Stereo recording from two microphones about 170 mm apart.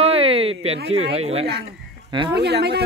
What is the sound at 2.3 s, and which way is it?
Speech, 75° right (ahead or behind).